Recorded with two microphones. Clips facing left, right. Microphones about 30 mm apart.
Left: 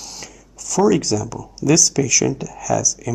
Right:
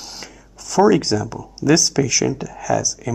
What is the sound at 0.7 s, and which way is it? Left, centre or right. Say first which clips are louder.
Speech: right 2 dB; right.